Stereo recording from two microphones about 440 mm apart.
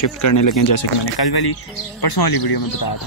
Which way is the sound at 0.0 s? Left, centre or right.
Left.